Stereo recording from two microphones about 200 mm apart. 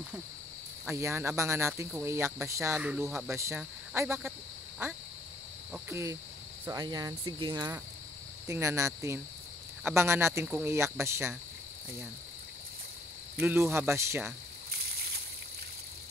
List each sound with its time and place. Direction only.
0.8 s speech: 15° right (ahead or behind)
3.3 s speech: 15° right (ahead or behind)
5.7 s speech: 15° right (ahead or behind)
6.6 s cricket: 20° right (ahead or behind)
8.5 s speech: 15° right (ahead or behind)
13.4 s speech: 10° right (ahead or behind)